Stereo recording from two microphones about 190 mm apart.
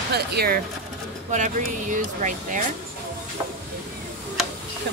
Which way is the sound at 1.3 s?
40° right (ahead or behind).